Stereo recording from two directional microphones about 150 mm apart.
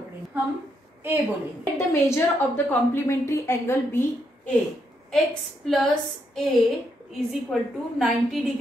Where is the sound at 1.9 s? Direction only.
15° left (ahead or behind).